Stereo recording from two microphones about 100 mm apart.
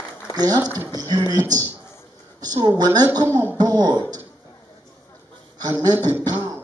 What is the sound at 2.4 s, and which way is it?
Speech, 40° right (ahead or behind).